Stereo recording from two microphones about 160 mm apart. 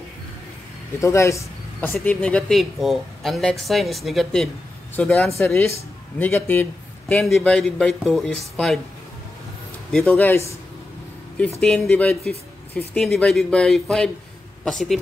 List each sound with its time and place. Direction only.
0.9 s speech: 20° left (ahead or behind); by 8.7 s centre (ahead or behind)
9.9 s speech: 10° left (ahead or behind)
11.6 s a man's voice: 5° left (ahead or behind)